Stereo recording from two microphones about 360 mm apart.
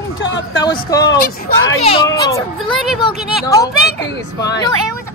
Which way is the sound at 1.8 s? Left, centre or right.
Centre.